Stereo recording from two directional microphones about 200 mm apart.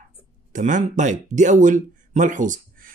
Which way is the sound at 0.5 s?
40° right (ahead or behind).